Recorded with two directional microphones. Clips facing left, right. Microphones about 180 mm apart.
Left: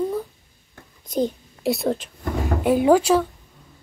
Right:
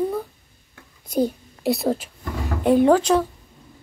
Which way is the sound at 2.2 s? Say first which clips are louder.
Left 4 dB; 50° left (ahead or behind).